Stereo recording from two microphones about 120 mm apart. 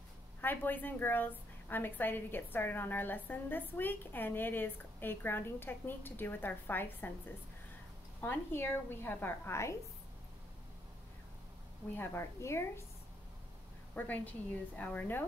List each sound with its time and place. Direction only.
0.4 s a woman's voice: 15° left (ahead or behind)
8.2 s a woman's voice: 15° left (ahead or behind)
12.0 s a woman's voice: 20° left (ahead or behind)
13.9 s a woman's voice: 15° left (ahead or behind)